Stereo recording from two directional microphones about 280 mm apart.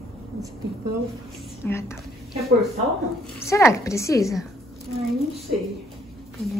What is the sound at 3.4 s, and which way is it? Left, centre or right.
Speech, centre.